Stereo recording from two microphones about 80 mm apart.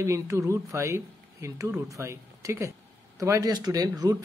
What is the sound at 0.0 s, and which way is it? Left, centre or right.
A man's voice, right.